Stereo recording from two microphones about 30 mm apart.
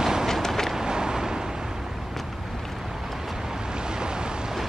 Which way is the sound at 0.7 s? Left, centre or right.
Right.